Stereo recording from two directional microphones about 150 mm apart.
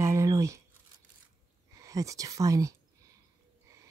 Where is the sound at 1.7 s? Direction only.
20° right (ahead or behind).